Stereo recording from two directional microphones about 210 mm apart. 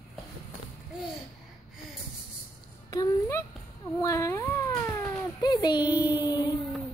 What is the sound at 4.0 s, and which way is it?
Cat, 15° left (ahead or behind).